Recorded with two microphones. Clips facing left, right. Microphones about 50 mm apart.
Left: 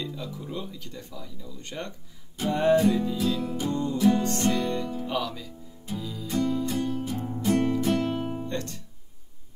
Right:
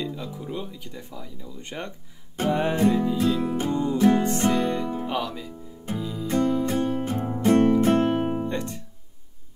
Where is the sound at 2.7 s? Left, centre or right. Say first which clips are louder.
Right 1 dB; right.